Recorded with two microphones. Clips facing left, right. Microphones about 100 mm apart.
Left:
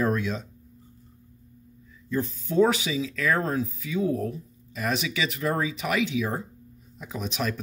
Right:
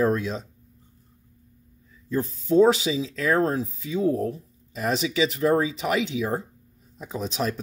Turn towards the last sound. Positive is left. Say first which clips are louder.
# right 2 dB
turn(degrees=-30)  # may be behind; listen again after turning